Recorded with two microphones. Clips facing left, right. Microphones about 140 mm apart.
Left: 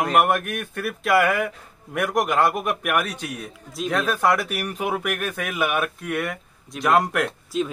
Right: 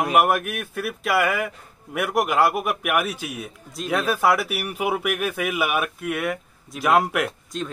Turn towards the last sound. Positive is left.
turn(degrees=0)  # may be behind; listen again after turning